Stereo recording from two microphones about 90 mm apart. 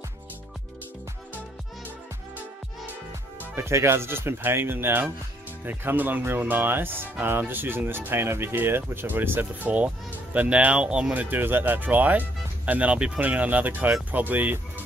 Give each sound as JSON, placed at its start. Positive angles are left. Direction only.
{"t": 3.3, "sound": "speech", "side_deg": -30}